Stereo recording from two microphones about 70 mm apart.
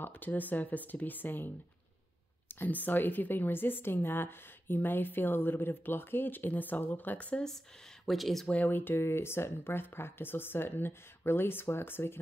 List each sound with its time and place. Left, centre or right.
0.0 s a woman's voice: left
8.0 s speech: centre
8.5 s speech: left